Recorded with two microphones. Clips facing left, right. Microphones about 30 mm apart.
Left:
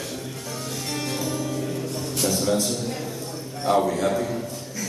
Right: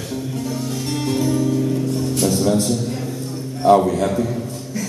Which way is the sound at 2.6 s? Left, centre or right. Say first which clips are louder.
Right 5 dB; centre.